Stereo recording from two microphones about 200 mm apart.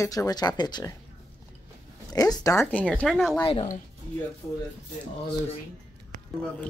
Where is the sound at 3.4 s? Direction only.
25° left (ahead or behind).